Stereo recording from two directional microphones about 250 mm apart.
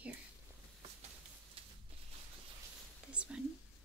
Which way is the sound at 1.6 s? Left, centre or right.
Right.